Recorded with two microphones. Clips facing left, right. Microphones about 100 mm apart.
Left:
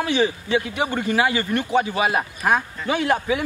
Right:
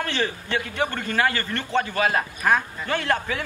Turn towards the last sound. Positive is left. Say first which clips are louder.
# left 4 dB
turn(degrees=10)  # may be behind; listen again after turning